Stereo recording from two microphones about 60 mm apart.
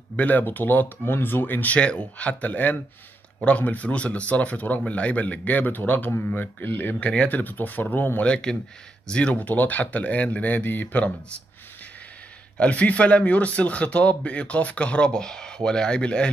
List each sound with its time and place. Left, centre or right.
0.1 s speech: left
7.1 s speech: centre
7.3 s speech: left
8.3 s speech: centre
9.3 s speech: left
12.5 s speech: left